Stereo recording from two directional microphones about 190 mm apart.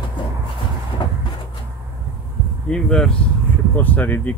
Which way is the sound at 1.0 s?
25° left (ahead or behind).